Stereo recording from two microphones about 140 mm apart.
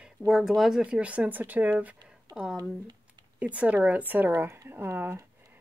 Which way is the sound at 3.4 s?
10° right (ahead or behind).